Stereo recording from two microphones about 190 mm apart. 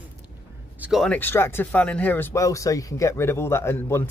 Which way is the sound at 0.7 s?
5° right (ahead or behind).